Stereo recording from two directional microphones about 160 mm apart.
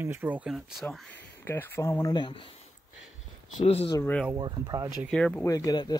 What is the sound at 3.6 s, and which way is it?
Speech, 40° left (ahead or behind).